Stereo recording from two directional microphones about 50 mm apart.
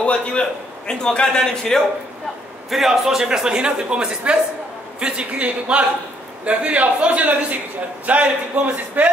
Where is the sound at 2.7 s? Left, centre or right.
Centre; by 9.1 s right.